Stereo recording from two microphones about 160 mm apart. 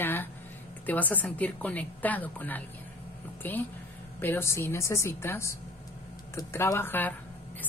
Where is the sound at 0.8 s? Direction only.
10° left (ahead or behind).